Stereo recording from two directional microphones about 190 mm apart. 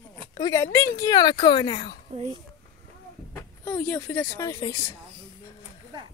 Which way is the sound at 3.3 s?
10° left (ahead or behind).